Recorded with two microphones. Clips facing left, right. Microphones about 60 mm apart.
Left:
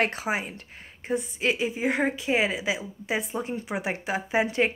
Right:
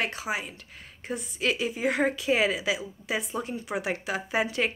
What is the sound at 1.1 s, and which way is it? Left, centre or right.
A woman's voice, left.